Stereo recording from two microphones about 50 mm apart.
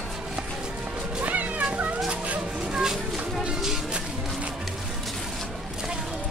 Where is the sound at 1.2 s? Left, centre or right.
Right.